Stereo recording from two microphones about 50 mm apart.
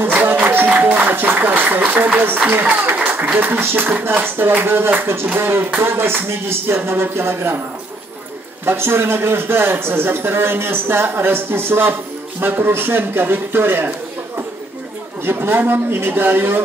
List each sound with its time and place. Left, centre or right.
0.0 s a sound: right
1.0 s speech: right
2.8 s music: right
3.3 s a man's voice: right
8.6 s a man's voice: right
15.2 s a man's voice: right